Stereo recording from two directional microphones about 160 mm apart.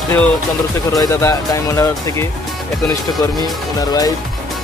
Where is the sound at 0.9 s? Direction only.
20° left (ahead or behind).